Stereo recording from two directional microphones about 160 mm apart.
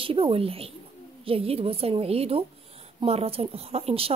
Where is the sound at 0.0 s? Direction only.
35° right (ahead or behind).